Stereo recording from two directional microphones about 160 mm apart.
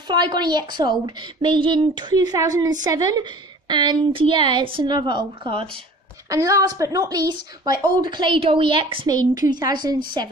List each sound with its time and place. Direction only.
0.1 s a woman's voice: 25° right (ahead or behind)
6.2 s a woman's voice: 20° right (ahead or behind)